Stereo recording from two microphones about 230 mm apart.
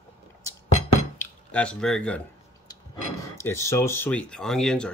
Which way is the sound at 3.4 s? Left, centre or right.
Centre.